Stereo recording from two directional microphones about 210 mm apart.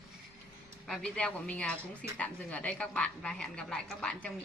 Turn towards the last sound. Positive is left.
turn(degrees=5)  # may be behind; listen again after turning